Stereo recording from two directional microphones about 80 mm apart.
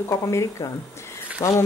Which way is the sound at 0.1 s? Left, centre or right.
Left.